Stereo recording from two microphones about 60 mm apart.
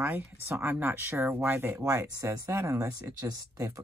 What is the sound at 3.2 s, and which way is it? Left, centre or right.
Speech, right.